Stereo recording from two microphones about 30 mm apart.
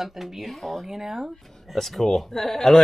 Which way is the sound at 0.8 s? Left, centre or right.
Centre.